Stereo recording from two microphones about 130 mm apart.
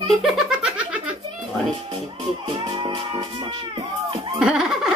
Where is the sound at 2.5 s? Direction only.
40° right (ahead or behind).